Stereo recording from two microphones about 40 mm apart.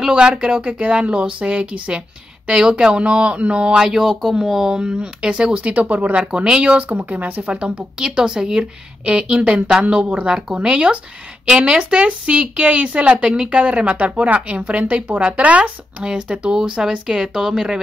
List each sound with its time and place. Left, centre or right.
0.1 s speech: right
3.0 s speech: right
3.8 s speech: centre
4.7 s speech: right
6.1 s speech: right
6.9 s speech: right
7.4 s speech: right
8.0 s speech: centre; by 15.7 s right
16.0 s speech: right